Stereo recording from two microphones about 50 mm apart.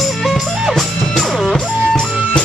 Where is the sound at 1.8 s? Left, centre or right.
Centre.